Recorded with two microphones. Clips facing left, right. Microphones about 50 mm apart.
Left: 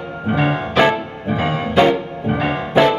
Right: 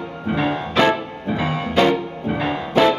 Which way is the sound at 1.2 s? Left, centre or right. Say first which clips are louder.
Left 4 dB; left.